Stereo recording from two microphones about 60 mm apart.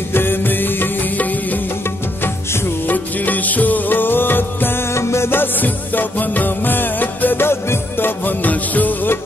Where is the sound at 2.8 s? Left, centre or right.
Left.